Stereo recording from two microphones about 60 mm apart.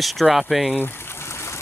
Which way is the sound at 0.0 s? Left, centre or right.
Centre.